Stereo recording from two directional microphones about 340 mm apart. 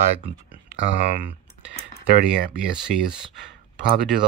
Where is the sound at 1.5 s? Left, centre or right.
Left.